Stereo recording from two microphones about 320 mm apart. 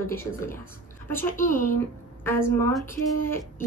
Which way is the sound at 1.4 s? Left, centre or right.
Left.